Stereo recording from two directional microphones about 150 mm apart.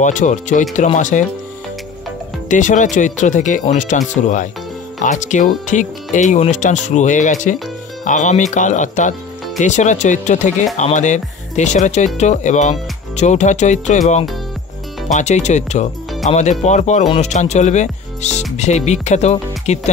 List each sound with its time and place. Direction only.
0.0 s speech: 55° left (ahead or behind)
2.4 s speech: 55° left (ahead or behind)